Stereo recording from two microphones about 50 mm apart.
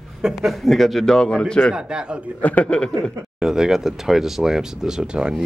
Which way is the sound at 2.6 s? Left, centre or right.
Centre.